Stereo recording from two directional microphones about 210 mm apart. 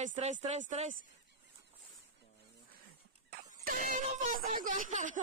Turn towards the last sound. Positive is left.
turn(degrees=-40)  # may be behind; listen again after turning